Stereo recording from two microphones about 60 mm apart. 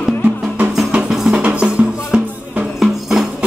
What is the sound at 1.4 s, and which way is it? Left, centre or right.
Music, centre.